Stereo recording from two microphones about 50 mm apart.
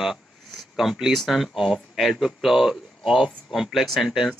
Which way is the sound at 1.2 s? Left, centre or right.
Centre.